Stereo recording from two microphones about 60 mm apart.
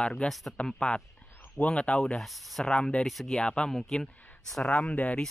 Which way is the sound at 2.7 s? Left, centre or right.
Centre.